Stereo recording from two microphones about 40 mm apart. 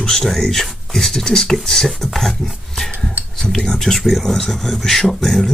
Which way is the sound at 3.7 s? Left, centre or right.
Centre.